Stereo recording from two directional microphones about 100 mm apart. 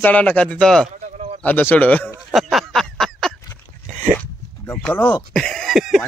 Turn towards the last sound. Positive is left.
turn(degrees=-5)  # may be behind; listen again after turning